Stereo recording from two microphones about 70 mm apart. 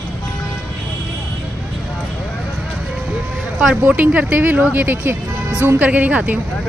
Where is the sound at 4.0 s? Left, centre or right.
Centre.